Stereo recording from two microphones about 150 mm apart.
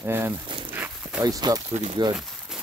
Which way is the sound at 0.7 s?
15° right (ahead or behind).